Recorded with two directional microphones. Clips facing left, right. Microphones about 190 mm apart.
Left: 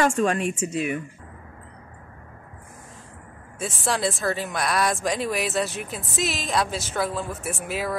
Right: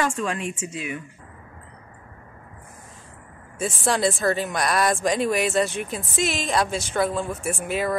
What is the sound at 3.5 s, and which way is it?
Speech, centre (ahead or behind).